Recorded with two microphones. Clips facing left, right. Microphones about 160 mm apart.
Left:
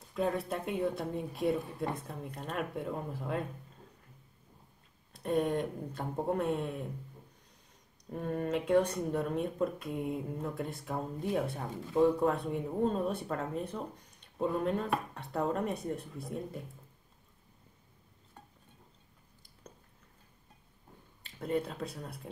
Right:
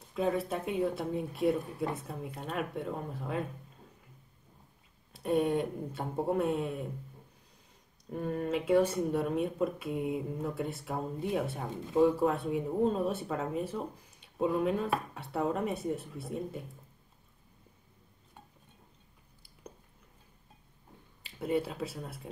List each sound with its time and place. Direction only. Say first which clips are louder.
0.1 s speech: right 2 dB; centre (ahead or behind)
5.1 s speech: right 2 dB; 5° right (ahead or behind)
8.1 s speech: right 1 dB; centre (ahead or behind)
19.6 s a sound: right 4 dB; 10° right (ahead or behind)
21.2 s speech: right 2 dB; 5° right (ahead or behind)